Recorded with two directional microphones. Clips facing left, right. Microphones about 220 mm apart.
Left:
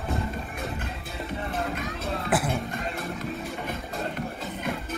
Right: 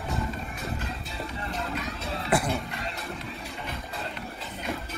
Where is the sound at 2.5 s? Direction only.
50° left (ahead or behind).